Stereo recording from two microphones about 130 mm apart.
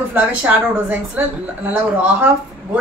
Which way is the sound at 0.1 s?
10° right (ahead or behind).